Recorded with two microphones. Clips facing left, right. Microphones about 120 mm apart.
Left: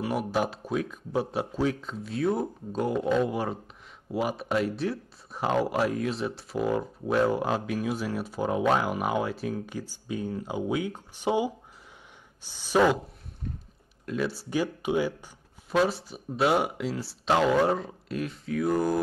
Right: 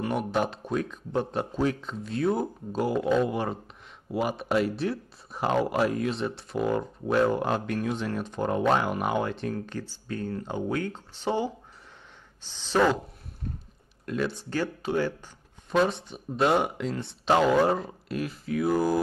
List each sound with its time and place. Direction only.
0.0 s speech: 5° left (ahead or behind)
14.0 s speech: centre (ahead or behind)